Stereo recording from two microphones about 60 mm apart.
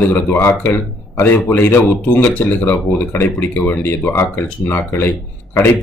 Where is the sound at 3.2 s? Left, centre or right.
Left.